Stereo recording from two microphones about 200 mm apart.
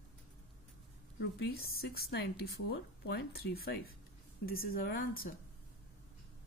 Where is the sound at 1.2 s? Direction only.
55° left (ahead or behind).